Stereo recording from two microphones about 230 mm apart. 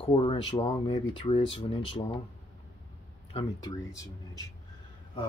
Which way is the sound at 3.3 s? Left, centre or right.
Left.